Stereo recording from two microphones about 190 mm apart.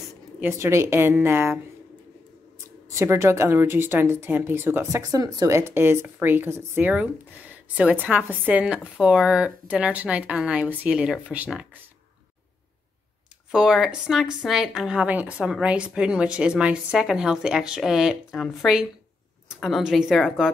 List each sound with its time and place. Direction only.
0.4 s a woman's voice: 15° right (ahead or behind)
2.9 s a woman's voice: 15° right (ahead or behind)
13.5 s a woman's voice: centre (ahead or behind)